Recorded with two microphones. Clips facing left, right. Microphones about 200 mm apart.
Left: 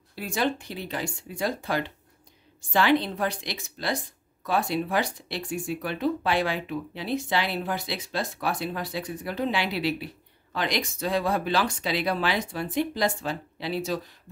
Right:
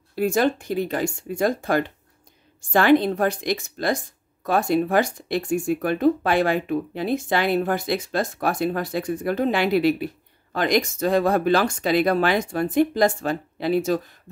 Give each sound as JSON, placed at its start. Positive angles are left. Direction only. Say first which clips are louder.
{"t": 0.1, "sound": "speech", "louder": "right 7 dB", "side_deg": -50}